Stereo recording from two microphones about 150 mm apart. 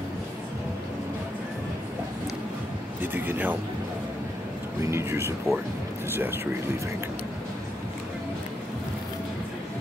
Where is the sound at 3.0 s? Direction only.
15° right (ahead or behind).